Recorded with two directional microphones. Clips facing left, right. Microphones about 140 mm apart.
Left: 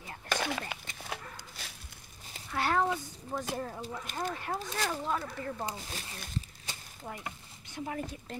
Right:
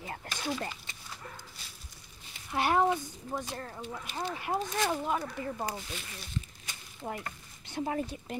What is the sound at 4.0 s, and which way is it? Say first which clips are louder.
Speech: even; 45° left (ahead or behind).